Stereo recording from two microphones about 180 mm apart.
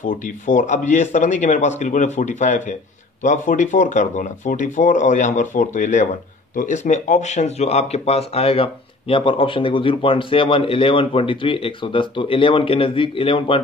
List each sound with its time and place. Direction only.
0.0 s speech: 45° left (ahead or behind); by 13.6 s 30° left (ahead or behind)